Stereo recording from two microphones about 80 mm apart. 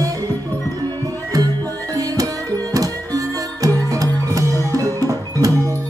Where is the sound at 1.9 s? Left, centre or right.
Right.